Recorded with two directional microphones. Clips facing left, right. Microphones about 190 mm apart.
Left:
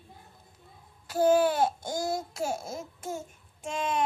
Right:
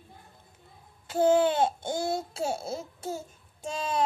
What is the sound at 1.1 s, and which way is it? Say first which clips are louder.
Babbling: even; 25° right (ahead or behind).